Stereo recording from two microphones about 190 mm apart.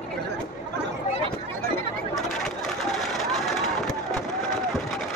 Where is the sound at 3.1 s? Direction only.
Centre (ahead or behind).